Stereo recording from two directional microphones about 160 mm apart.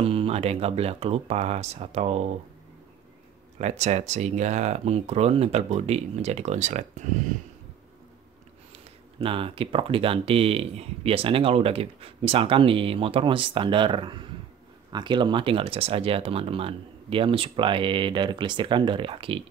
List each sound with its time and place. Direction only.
0.0 s speech: 35° right (ahead or behind)
3.5 s speech: 45° right (ahead or behind)
9.2 s speech: 35° right (ahead or behind)